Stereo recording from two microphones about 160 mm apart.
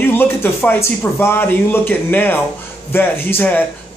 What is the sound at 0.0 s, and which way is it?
Speech, 15° left (ahead or behind).